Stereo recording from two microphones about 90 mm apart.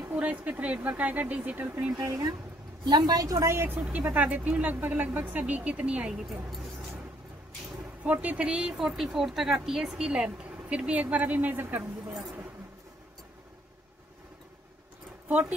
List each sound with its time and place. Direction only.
0.1 s speech: 15° right (ahead or behind)
2.0 s a woman's voice: 40° right (ahead or behind); by 6.2 s 10° right (ahead or behind)
8.0 s speech: 15° right (ahead or behind)